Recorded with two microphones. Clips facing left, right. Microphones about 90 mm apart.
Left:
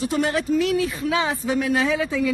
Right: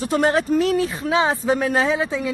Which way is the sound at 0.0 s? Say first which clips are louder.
Right 3 dB; 40° right (ahead or behind).